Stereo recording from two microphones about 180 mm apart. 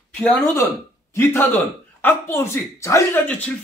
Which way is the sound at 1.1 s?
15° left (ahead or behind).